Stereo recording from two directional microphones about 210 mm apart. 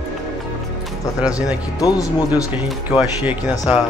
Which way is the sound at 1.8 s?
15° left (ahead or behind).